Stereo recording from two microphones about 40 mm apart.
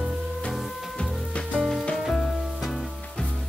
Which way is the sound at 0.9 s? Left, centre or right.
Left.